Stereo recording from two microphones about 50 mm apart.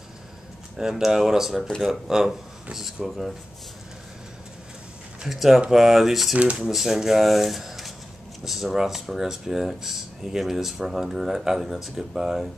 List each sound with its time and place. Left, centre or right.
0.7 s speech: centre
5.3 s speech: centre
6.3 s speech: right
6.7 s speech: centre